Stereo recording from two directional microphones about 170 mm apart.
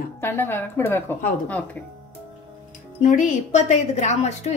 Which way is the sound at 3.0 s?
45° left (ahead or behind).